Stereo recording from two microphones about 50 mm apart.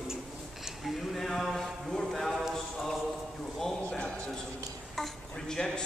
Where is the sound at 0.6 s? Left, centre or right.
Centre.